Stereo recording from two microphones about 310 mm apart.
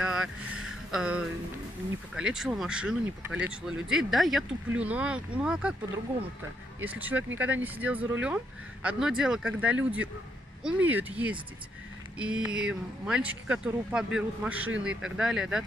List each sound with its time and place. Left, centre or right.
0.0 s vehicle: centre
2.1 s speech: centre
6.8 s speech: centre